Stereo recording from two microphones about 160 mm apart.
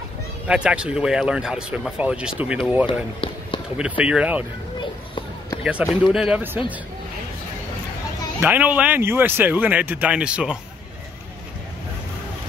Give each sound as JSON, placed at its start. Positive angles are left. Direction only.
{"t": 0.5, "sound": "speech", "side_deg": -5}
{"t": 2.9, "sound": "run", "side_deg": 30}
{"t": 3.7, "sound": "speech", "side_deg": -5}
{"t": 4.7, "sound": "children playing", "side_deg": 30}
{"t": 5.6, "sound": "speech", "side_deg": -5}
{"t": 8.4, "sound": "speech", "side_deg": -10}